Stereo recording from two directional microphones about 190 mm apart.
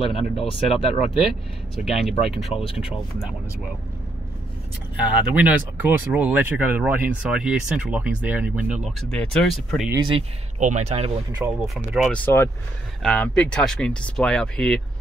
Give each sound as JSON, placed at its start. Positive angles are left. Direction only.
{"t": 0.0, "sound": "speech", "side_deg": 30}
{"t": 1.8, "sound": "speech", "side_deg": 0}
{"t": 4.9, "sound": "speech", "side_deg": -5}
{"t": 9.1, "sound": "speech", "side_deg": 5}
{"t": 10.6, "sound": "speech", "side_deg": -35}
{"t": 11.6, "sound": "speech", "side_deg": 0}